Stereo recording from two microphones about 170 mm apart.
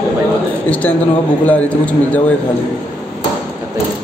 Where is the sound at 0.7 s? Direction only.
10° left (ahead or behind).